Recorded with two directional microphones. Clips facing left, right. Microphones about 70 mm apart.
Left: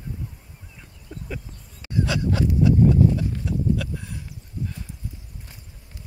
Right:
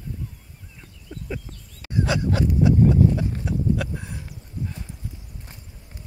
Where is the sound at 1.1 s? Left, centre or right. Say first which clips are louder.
Right 1 dB; centre.